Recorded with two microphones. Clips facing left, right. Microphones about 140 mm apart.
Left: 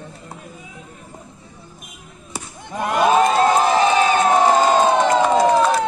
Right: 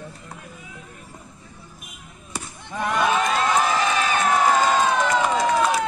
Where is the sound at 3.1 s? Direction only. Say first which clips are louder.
Left 9 dB; 35° left (ahead or behind).